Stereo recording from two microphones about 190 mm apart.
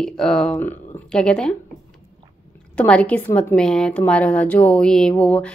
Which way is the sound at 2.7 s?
5° left (ahead or behind).